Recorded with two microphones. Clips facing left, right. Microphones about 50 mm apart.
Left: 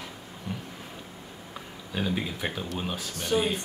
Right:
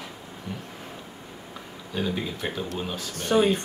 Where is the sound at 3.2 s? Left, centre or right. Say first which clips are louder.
Right 5 dB; right.